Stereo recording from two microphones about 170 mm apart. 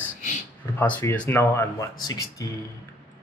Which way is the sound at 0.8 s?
10° left (ahead or behind).